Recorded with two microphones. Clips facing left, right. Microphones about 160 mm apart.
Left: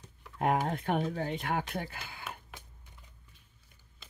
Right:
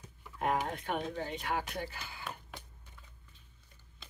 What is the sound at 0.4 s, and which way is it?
Speech, 45° left (ahead or behind).